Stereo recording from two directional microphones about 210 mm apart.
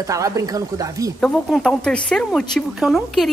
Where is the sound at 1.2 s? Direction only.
5° left (ahead or behind).